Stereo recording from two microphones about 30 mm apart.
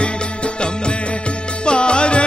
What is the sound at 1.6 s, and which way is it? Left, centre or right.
Music, left.